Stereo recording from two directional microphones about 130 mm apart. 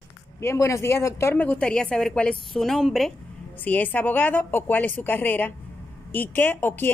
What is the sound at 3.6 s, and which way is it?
Speech, 15° left (ahead or behind).